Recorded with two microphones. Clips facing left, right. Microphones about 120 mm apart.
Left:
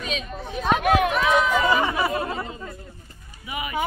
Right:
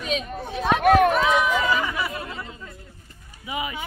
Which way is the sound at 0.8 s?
45° right (ahead or behind).